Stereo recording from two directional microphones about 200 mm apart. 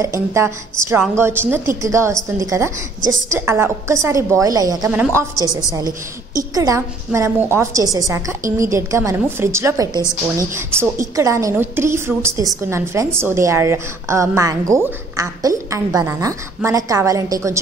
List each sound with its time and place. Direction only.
0.0 s a woman's voice: 15° right (ahead or behind)